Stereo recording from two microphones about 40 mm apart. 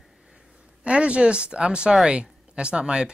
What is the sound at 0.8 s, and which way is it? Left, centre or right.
Speech, right.